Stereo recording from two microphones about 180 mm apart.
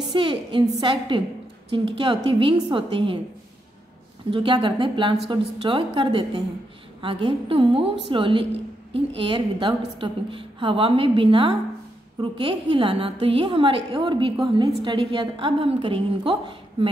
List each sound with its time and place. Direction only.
0.1 s a woman's voice: 30° right (ahead or behind)
4.3 s a woman's voice: 30° right (ahead or behind)